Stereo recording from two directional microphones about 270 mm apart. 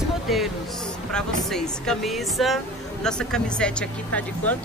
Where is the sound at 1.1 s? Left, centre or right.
Centre.